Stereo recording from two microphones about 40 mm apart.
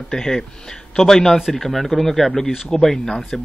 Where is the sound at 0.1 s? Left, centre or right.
Centre.